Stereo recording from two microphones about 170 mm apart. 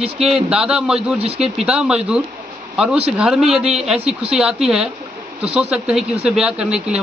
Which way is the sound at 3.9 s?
35° right (ahead or behind).